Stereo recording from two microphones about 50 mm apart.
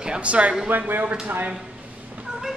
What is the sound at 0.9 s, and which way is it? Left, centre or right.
Speech, right.